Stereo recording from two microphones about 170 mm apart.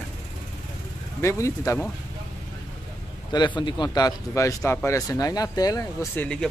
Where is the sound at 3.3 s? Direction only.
25° left (ahead or behind).